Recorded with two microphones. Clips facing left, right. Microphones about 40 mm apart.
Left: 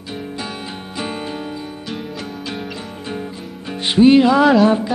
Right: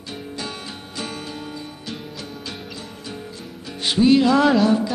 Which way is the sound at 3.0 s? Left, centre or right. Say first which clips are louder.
Left 8 dB; left.